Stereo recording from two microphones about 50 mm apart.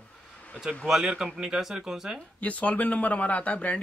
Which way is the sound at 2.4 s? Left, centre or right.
Left.